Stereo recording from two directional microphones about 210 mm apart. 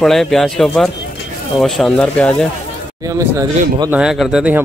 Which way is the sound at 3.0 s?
15° right (ahead or behind).